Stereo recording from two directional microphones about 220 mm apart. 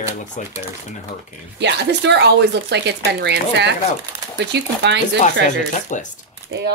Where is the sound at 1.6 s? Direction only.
50° right (ahead or behind).